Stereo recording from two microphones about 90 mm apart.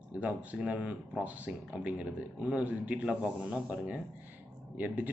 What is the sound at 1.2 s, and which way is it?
Speech, centre (ahead or behind).